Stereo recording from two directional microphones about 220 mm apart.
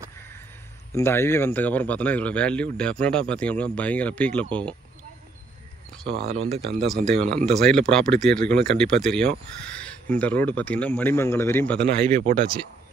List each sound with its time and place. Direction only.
0.9 s speech: 10° left (ahead or behind)
6.2 s speech: 30° right (ahead or behind)
6.9 s speech: 5° left (ahead or behind)
12.2 s speech: 40° right (ahead or behind)